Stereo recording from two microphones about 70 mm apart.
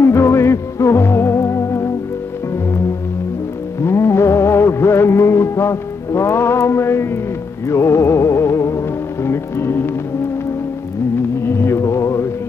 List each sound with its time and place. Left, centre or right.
0.0 s music: left
3.8 s music: left
11.4 s music: left